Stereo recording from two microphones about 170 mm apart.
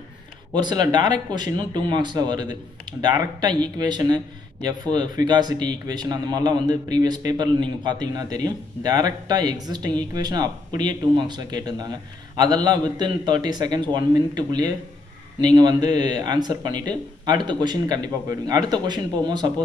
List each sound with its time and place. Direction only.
0.6 s a man's voice: 25° right (ahead or behind)